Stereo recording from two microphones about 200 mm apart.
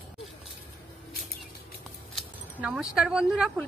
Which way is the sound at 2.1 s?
5° right (ahead or behind).